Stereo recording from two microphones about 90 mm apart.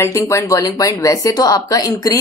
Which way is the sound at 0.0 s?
35° left (ahead or behind).